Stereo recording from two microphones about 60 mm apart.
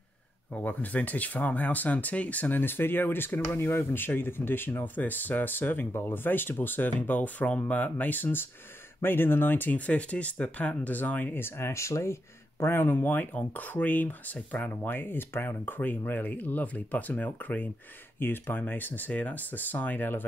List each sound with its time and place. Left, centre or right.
0.6 s speech: left
11.4 s speech: left
14.7 s speech: left